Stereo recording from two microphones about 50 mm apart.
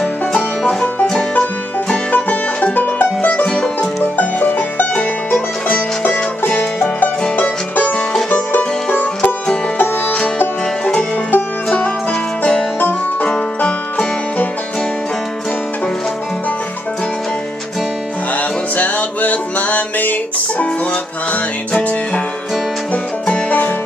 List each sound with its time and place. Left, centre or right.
0.3 s music: centre
2.1 s music: left
3.4 s music: centre
4.0 s music: left
7.0 s music: left
11.3 s music: left
18.8 s music: left